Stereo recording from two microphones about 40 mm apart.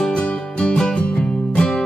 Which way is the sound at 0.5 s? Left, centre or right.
Left.